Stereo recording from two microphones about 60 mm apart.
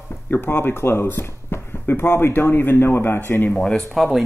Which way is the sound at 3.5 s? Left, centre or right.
Centre.